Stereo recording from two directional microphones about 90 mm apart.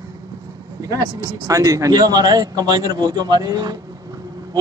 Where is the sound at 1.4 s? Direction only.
40° right (ahead or behind).